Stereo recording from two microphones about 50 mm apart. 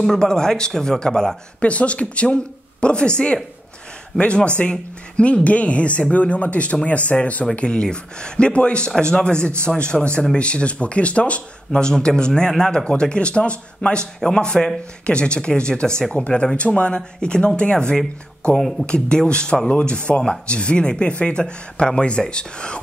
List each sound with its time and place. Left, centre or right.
0.0 s speech: centre
1.6 s speech: left
18.6 s speech: centre
18.9 s speech: centre